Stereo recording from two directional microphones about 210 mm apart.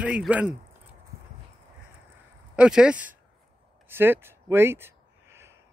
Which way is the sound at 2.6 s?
5° right (ahead or behind).